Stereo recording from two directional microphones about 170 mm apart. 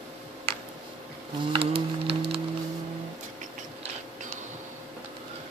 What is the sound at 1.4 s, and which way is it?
Music, 30° right (ahead or behind).